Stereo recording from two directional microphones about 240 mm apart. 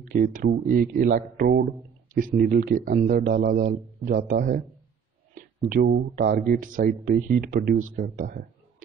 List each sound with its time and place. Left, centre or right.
0.1 s speech: right